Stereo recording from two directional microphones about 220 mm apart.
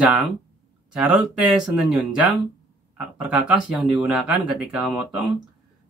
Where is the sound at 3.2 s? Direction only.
5° right (ahead or behind).